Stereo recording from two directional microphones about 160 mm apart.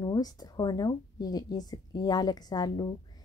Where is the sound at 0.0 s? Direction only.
25° left (ahead or behind).